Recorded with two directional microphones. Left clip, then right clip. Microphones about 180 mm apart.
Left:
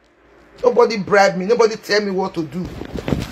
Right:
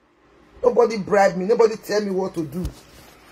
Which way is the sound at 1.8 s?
25° left (ahead or behind).